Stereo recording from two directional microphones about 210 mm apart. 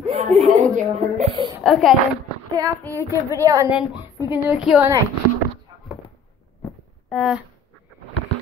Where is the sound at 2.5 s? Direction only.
20° right (ahead or behind).